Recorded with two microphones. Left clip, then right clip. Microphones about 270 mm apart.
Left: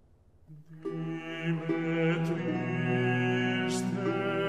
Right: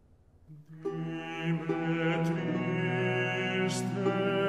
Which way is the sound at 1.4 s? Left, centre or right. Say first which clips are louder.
Left 1 dB; right.